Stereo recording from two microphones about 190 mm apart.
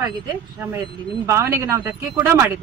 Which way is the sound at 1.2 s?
15° right (ahead or behind).